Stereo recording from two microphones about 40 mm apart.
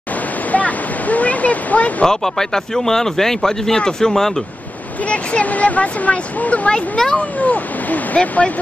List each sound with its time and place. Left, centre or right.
0.5 s a sound: left
2.0 s speech: centre
5.0 s speech: left
6.7 s speech: centre
7.2 s speech: left